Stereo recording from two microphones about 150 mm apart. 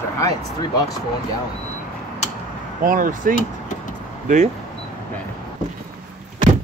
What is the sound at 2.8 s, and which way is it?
Speech, 60° right (ahead or behind).